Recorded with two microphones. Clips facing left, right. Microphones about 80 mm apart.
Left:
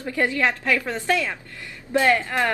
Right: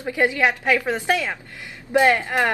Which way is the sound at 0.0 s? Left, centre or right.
Centre.